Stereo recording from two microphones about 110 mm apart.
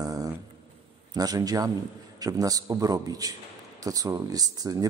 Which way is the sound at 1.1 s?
35° right (ahead or behind).